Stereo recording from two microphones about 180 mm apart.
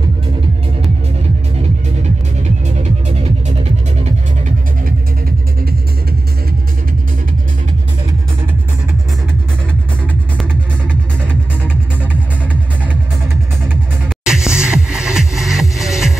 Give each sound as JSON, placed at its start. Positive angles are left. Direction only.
{"t": 2.8, "sound": "music", "side_deg": -40}
{"t": 14.2, "sound": "music", "side_deg": -5}